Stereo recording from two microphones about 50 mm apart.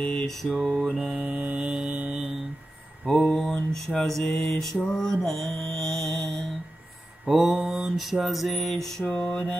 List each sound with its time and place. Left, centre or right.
0.4 s music: centre
0.7 s mantra: centre
1.1 s mantra: right
3.1 s mantra: centre
7.2 s mantra: centre
7.9 s music: centre
9.2 s a sound: left